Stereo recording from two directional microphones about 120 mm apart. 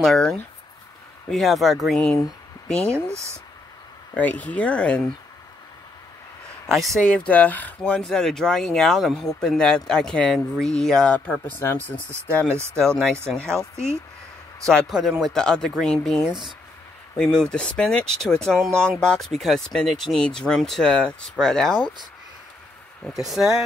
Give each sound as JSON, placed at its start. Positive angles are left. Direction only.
{"t": 0.0, "sound": "speech", "side_deg": 5}
{"t": 2.9, "sound": "speech", "side_deg": -25}
{"t": 4.1, "sound": "speech", "side_deg": 15}
{"t": 6.7, "sound": "speech", "side_deg": 0}
{"t": 11.1, "sound": "speech", "side_deg": 15}
{"t": 14.9, "sound": "speech", "side_deg": -5}
{"t": 23.0, "sound": "speech", "side_deg": 0}